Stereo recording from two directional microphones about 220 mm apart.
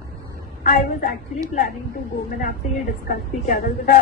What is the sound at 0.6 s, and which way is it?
Speech, 35° left (ahead or behind).